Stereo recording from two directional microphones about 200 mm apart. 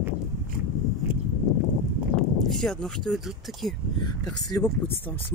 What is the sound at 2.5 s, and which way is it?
A woman's voice, 5° left (ahead or behind).